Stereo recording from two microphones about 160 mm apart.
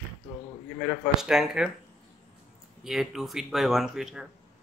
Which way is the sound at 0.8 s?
Centre (ahead or behind).